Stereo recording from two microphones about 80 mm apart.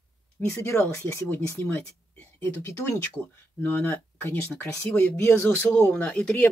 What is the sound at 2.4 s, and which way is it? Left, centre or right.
Speech, left.